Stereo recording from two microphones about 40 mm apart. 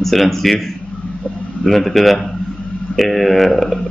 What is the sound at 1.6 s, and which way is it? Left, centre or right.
Speech, centre.